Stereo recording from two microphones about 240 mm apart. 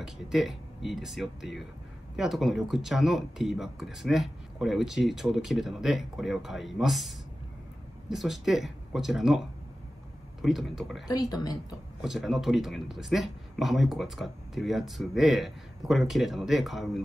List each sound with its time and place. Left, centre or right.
0.0 s speech: centre
11.1 s speech: centre
12.0 s speech: centre